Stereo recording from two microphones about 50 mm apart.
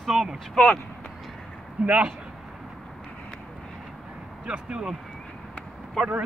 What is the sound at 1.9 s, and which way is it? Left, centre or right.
Speech, right.